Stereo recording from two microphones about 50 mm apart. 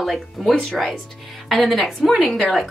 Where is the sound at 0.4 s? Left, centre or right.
Centre.